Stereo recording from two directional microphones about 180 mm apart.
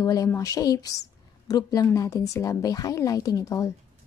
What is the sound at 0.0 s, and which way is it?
Speech, 20° left (ahead or behind).